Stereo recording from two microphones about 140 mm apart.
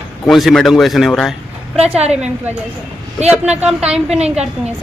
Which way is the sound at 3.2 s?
5° right (ahead or behind).